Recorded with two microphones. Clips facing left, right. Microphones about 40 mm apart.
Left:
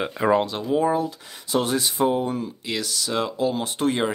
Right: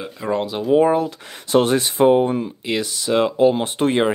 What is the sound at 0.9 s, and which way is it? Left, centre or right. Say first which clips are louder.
Speech: right 4 dB; right.